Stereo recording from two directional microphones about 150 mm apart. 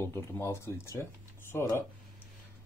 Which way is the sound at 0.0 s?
15° left (ahead or behind).